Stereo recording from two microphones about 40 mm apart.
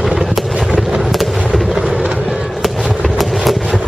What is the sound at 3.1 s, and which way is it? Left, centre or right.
Vehicle, centre.